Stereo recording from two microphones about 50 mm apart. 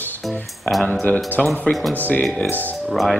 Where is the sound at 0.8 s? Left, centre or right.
Left.